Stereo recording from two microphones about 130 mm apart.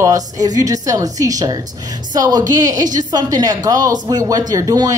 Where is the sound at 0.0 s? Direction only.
30° right (ahead or behind).